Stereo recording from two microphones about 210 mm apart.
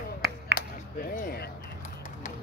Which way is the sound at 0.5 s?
45° left (ahead or behind).